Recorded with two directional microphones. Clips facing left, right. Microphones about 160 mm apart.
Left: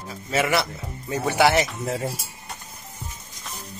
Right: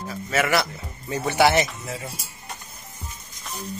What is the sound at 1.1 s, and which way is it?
Speech, 10° left (ahead or behind).